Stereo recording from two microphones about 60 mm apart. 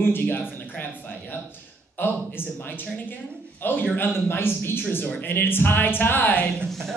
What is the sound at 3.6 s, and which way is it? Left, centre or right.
Speech, left.